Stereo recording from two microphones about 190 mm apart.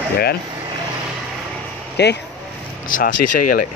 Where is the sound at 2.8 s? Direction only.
45° left (ahead or behind).